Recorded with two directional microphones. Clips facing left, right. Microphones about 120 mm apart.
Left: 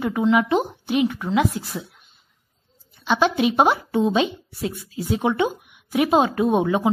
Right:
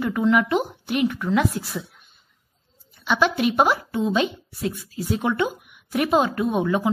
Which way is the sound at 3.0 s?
25° left (ahead or behind).